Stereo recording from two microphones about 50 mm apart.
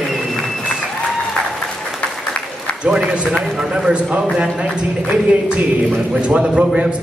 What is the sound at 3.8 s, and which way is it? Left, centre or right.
Speech, right.